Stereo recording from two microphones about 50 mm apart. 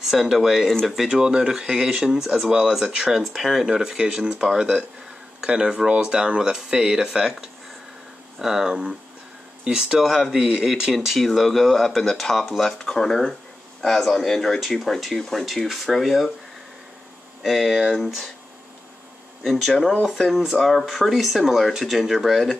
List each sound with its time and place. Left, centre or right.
0.0 s speech: centre
0.7 s speech: centre
0.9 s speech: centre
8.4 s speech: centre
17.4 s speech: centre
17.9 s speech: centre
19.4 s speech: centre